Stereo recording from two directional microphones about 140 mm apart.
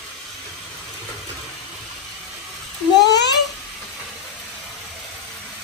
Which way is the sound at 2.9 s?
30° left (ahead or behind).